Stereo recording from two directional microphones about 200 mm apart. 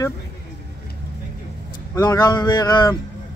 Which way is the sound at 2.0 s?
20° left (ahead or behind).